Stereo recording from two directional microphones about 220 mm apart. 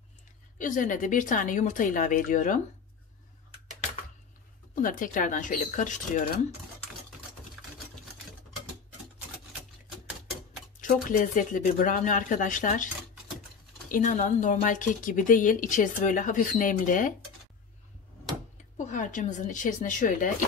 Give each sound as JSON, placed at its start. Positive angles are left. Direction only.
{"t": 0.6, "sound": "a woman's voice", "side_deg": 35}
{"t": 4.7, "sound": "a woman's voice", "side_deg": 35}
{"t": 10.8, "sound": "a woman's voice", "side_deg": 35}
{"t": 18.9, "sound": "a woman's voice", "side_deg": 35}